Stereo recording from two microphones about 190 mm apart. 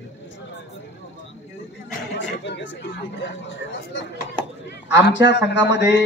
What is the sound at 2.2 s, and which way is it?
Speech, 70° left (ahead or behind).